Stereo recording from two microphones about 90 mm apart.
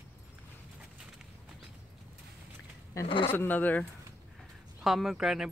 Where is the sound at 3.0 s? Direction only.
90° left.